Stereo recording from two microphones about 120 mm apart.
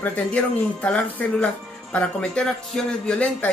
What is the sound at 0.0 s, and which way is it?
Speech, 10° left (ahead or behind).